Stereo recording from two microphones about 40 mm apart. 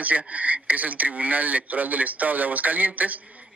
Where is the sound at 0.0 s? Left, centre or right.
Right.